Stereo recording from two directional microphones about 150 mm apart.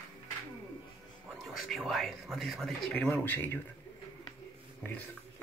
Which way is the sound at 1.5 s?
Centre (ahead or behind).